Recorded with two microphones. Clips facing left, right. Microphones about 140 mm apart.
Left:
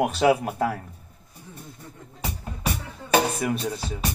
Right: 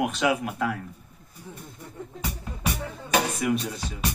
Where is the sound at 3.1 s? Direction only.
35° left (ahead or behind).